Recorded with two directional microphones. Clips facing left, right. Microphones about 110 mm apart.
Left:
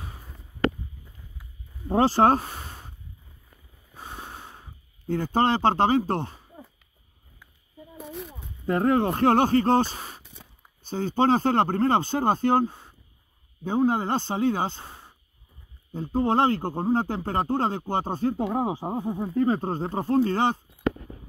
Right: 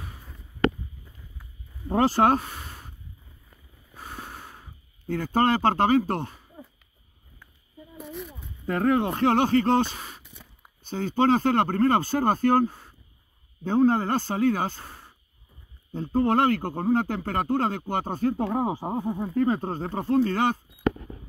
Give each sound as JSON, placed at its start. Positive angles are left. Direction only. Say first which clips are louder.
{"t": 2.0, "sound": "speech", "louder": "left 1 dB", "side_deg": 30}
{"t": 3.9, "sound": "snort", "louder": "even", "side_deg": 20}
{"t": 8.1, "sound": "speech", "louder": "right 1 dB", "side_deg": 30}
{"t": 15.9, "sound": "speech", "louder": "right 1 dB", "side_deg": 10}
{"t": 16.2, "sound": "speech", "louder": "even", "side_deg": 25}
{"t": 18.3, "sound": "speech", "louder": "even", "side_deg": 10}
{"t": 19.3, "sound": "speech", "louder": "left 1 dB", "side_deg": 25}